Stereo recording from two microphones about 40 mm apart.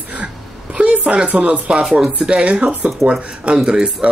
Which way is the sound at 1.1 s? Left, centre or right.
Right.